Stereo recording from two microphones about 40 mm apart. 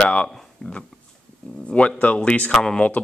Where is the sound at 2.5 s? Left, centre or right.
Centre.